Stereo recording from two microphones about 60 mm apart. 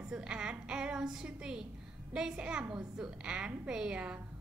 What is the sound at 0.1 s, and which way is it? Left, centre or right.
A woman's voice, centre.